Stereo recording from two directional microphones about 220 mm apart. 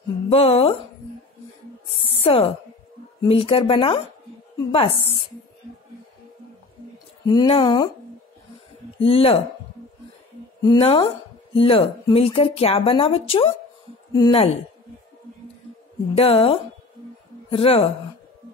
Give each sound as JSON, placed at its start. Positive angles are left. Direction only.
{"t": 0.3, "sound": "speech", "side_deg": 25}
{"t": 1.9, "sound": "speech", "side_deg": 25}
{"t": 7.2, "sound": "speech", "side_deg": 20}
{"t": 9.0, "sound": "speech", "side_deg": 25}
{"t": 10.6, "sound": "speech", "side_deg": 20}
{"t": 16.2, "sound": "speech", "side_deg": 25}